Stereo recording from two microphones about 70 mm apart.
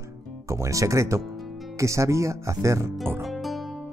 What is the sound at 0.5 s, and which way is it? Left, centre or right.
Speech, right.